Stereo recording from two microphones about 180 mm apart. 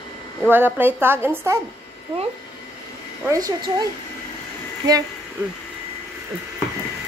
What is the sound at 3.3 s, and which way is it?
Speech, 20° right (ahead or behind).